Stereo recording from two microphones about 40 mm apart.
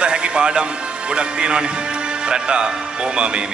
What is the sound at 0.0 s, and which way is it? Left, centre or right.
A man's voice, right.